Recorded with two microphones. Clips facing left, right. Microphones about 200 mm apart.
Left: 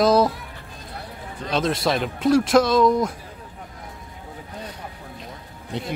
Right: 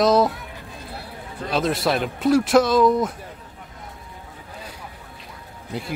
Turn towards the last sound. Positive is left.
turn(degrees=-5)  # may be behind; listen again after turning